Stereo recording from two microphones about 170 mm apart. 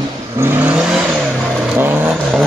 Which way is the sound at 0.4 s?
10° right (ahead or behind).